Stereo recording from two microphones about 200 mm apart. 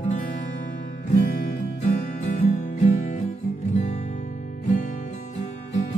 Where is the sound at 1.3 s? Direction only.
45° left (ahead or behind).